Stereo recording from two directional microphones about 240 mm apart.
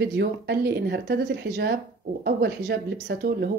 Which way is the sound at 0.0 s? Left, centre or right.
Right.